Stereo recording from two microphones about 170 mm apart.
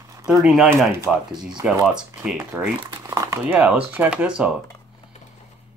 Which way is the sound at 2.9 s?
20° right (ahead or behind).